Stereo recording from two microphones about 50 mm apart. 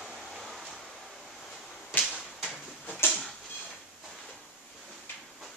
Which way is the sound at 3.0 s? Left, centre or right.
Left.